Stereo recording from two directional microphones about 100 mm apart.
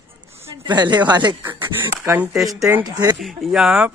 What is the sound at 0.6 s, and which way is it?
Speech, 45° right (ahead or behind).